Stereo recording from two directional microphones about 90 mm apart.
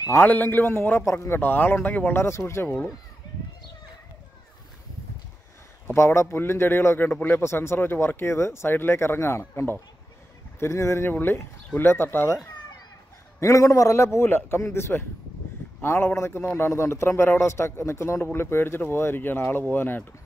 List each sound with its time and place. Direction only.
0.1 s a man's voice: 20° left (ahead or behind)
5.9 s a man's voice: 30° left (ahead or behind)
13.4 s a man's voice: 35° left (ahead or behind)